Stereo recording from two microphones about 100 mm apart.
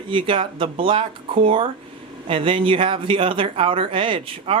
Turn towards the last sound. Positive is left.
turn(degrees=-65)  # may be behind; listen again after turning